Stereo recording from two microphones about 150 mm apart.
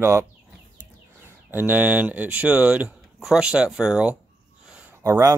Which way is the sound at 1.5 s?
10° right (ahead or behind).